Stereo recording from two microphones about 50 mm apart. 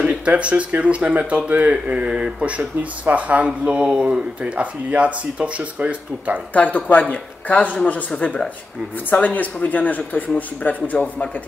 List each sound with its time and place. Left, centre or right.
0.0 s speech: right
6.5 s a man's voice: left
9.1 s speech: left